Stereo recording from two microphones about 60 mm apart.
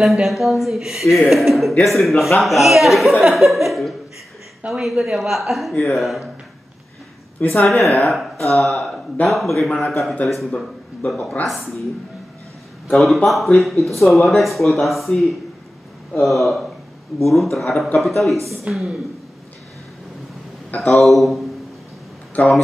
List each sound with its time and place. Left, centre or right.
0.0 s speech: centre
3.3 s laughter: centre
4.6 s speech: centre
7.4 s speech: left
7.8 s speech: centre
12.9 s speech: centre
20.8 s speech: centre